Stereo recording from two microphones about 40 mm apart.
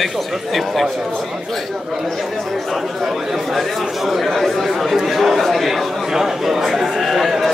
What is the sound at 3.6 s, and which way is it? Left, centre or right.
A man's voice, centre.